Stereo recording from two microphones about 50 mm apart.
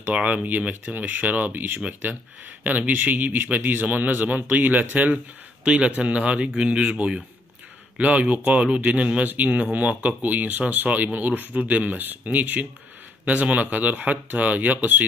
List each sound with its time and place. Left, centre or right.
0.1 s speech: right